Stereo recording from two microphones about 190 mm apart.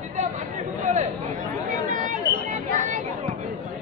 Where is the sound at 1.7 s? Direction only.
40° right (ahead or behind).